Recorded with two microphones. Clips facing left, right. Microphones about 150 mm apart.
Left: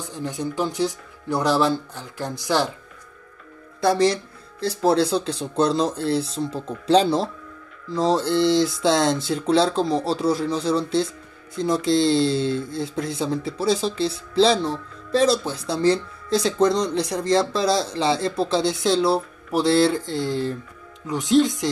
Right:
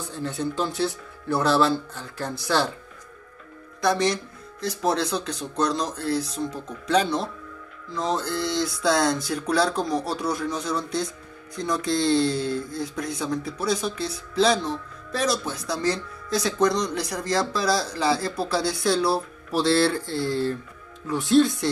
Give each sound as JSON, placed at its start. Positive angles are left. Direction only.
{"t": 0.1, "sound": "speech", "side_deg": 15}
{"t": 3.8, "sound": "speech", "side_deg": 30}